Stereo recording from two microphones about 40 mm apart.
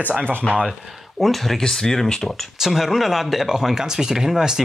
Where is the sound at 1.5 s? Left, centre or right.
Centre.